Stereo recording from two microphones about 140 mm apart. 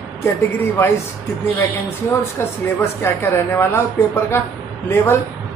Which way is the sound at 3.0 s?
15° left (ahead or behind).